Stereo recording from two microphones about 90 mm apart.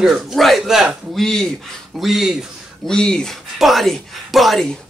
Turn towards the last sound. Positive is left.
turn(degrees=0)  # may be behind; listen again after turning